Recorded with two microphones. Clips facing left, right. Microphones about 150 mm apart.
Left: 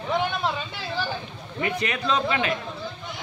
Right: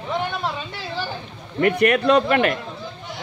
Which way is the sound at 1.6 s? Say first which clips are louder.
Right 10 dB; 60° right (ahead or behind).